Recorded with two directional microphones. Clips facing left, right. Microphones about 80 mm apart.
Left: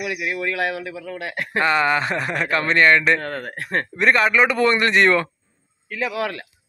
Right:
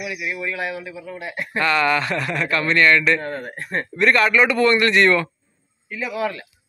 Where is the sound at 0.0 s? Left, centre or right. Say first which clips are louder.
Left 2 dB; left.